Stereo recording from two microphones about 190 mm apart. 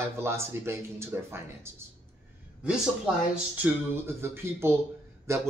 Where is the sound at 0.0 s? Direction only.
15° right (ahead or behind).